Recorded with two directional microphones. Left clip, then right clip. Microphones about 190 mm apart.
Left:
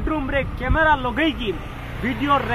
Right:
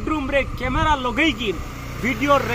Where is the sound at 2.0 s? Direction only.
45° right (ahead or behind).